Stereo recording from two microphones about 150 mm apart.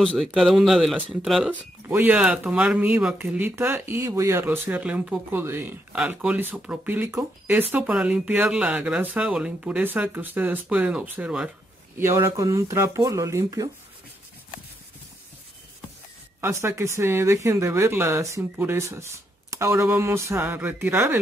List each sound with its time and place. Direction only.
0.0 s speech: centre (ahead or behind)
12.0 s speech: 20° right (ahead or behind)
16.3 s speech: 15° right (ahead or behind)